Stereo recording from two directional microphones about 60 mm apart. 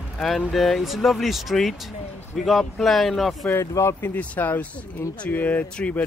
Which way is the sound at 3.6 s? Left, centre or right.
Left.